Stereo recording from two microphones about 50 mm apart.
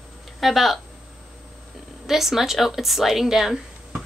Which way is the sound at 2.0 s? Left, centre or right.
Centre.